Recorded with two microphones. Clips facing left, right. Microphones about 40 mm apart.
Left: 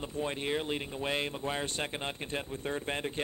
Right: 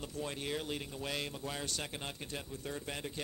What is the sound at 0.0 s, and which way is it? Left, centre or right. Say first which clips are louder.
Speech: left 6 dB; left.